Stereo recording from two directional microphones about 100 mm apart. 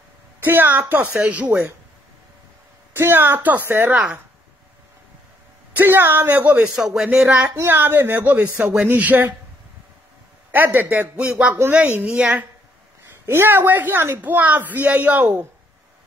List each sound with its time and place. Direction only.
0.4 s a woman's voice: 20° right (ahead or behind)
2.9 s speech: 20° right (ahead or behind)
3.9 s a woman's voice: 10° right (ahead or behind)
5.8 s speech: 20° right (ahead or behind)
6.7 s a man's voice: 5° right (ahead or behind)
7.3 s a woman's voice: 25° right (ahead or behind)
10.5 s a woman's voice: 20° right (ahead or behind)